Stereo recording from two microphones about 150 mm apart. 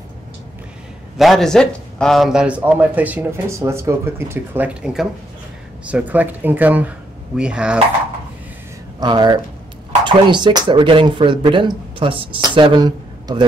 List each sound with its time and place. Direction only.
1.1 s a man's voice: centre (ahead or behind)
9.0 s speech: 30° right (ahead or behind)